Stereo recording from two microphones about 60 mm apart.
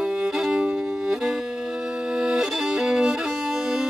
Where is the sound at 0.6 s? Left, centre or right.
Centre.